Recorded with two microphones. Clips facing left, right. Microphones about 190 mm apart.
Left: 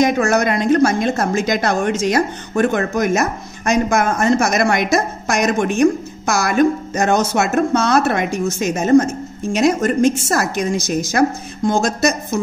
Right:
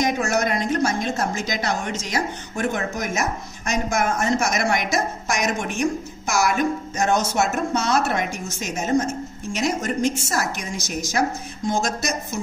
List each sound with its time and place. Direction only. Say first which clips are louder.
0.0 s a woman's voice: left 6 dB; 60° left (ahead or behind)